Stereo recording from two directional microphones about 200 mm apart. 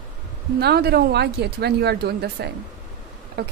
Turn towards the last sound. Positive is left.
turn(degrees=-55)  # may be behind; listen again after turning